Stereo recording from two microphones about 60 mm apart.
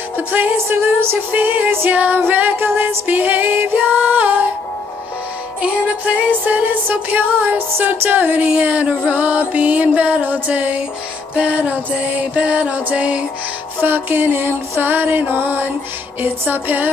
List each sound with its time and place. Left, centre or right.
0.3 s music: right
5.6 s music: centre
6.4 s music: right
13.7 s music: right